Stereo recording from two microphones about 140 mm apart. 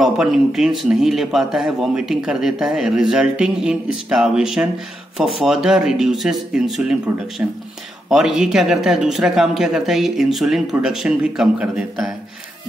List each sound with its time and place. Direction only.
0.0 s a man's voice: 5° right (ahead or behind)